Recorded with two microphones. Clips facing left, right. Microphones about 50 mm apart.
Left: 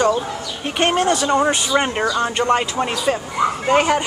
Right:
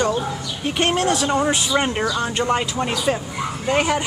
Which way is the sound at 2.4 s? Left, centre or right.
Centre.